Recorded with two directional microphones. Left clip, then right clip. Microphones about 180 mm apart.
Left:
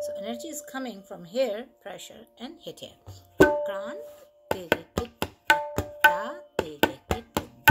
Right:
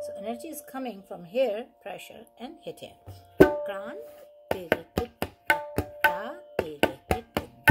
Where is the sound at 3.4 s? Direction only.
5° left (ahead or behind).